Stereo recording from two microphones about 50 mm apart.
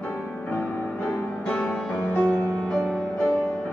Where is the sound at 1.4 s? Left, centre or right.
Centre.